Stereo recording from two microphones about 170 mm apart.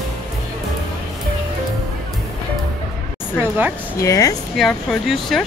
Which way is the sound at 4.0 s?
20° left (ahead or behind).